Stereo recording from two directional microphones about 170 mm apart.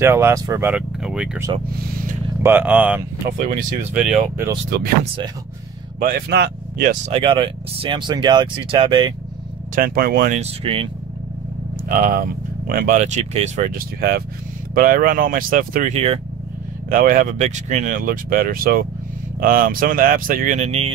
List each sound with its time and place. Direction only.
0.0 s speech: 15° right (ahead or behind)
2.4 s speech: 10° right (ahead or behind)
4.6 s speech: 65° right (ahead or behind)
5.9 s speech: 60° right (ahead or behind)
7.1 s speech: 30° right (ahead or behind)
9.8 s speech: 60° right (ahead or behind)
10.3 s speech: 35° right (ahead or behind)
11.9 s speech: 60° right (ahead or behind); by 16.2 s 40° right (ahead or behind)
16.9 s speech: 55° right (ahead or behind); by 20.9 s 40° right (ahead or behind)